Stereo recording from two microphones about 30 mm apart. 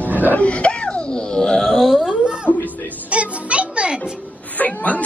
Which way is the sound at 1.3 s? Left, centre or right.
Left.